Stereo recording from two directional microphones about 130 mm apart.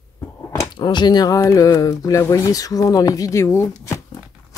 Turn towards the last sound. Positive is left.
turn(degrees=20)  # may be behind; listen again after turning